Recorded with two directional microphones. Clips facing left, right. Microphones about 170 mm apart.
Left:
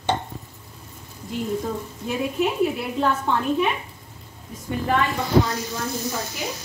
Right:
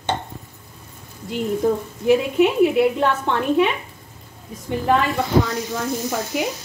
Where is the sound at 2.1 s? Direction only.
80° right.